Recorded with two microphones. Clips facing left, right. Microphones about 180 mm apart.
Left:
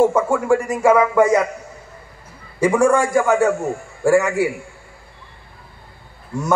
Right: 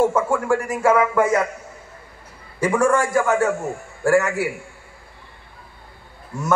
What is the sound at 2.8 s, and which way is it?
Speech, 10° left (ahead or behind).